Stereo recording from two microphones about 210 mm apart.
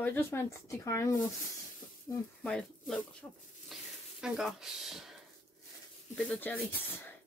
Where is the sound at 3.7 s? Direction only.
Centre (ahead or behind).